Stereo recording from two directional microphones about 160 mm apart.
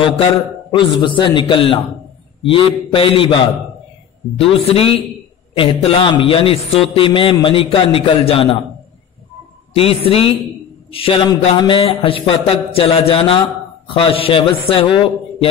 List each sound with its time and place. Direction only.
0.7 s a man's voice: 30° left (ahead or behind)
9.8 s a man's voice: 35° left (ahead or behind)